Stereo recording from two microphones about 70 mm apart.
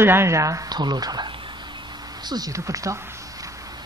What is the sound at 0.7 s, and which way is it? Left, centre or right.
Speech, right.